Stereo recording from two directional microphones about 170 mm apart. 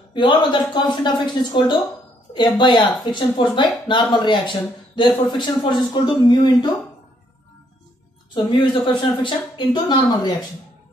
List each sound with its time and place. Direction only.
0.1 s speech: 30° left (ahead or behind)
8.4 s speech: 25° left (ahead or behind)